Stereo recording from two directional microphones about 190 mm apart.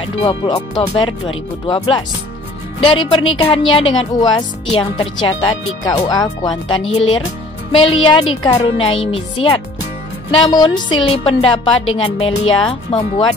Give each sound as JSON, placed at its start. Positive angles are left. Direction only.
{"t": 0.0, "sound": "speech", "side_deg": 25}
{"t": 2.8, "sound": "speech", "side_deg": 25}